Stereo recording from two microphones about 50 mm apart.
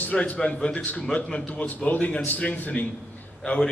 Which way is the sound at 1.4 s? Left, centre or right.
Left.